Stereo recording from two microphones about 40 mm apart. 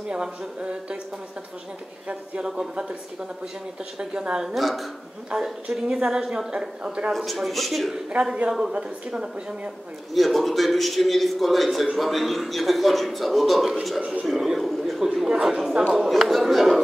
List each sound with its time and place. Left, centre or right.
0.0 s speech: right
2.4 s a woman's voice: centre
4.0 s speech: right
4.6 s a man's voice: centre
5.3 s a woman's voice: centre
7.1 s a man's voice: centre
8.2 s a man's voice: right
8.5 s a woman's voice: centre
10.1 s a man's voice: centre
14.2 s a sound: centre
15.2 s a woman's voice: centre
16.0 s a man's voice: centre